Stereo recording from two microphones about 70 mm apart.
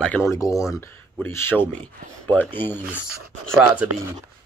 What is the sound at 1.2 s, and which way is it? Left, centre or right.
A man's voice, left.